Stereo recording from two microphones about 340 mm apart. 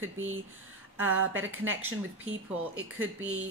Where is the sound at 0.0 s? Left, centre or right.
Right.